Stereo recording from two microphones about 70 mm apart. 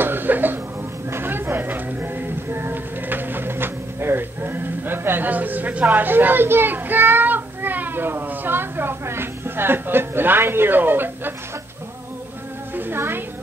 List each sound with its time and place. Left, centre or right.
0.0 s cough: right
1.1 s music: right
12.7 s music: right